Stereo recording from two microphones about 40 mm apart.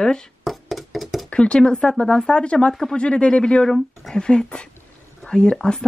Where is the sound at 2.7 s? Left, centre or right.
Centre.